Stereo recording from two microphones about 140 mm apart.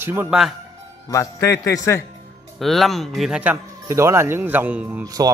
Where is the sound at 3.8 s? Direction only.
20° right (ahead or behind).